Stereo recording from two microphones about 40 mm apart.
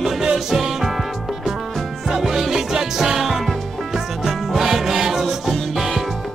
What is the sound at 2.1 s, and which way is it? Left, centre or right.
Music, centre.